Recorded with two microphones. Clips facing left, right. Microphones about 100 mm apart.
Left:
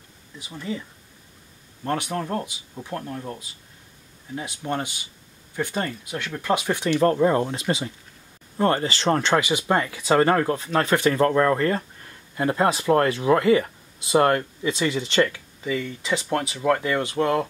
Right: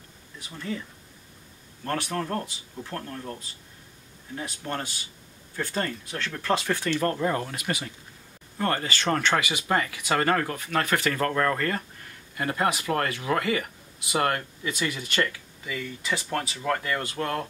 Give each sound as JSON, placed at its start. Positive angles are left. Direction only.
{"t": 0.5, "sound": "speech", "side_deg": 10}
{"t": 1.9, "sound": "speech", "side_deg": 15}